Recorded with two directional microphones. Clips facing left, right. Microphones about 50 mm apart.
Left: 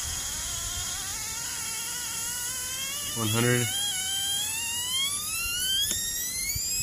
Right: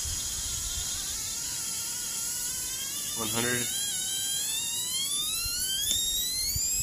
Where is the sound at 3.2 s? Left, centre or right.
Left.